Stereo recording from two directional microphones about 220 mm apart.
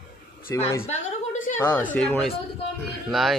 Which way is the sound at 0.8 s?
35° left (ahead or behind).